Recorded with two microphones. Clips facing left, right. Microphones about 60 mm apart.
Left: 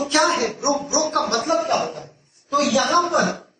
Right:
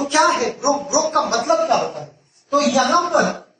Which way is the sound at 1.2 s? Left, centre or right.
Right.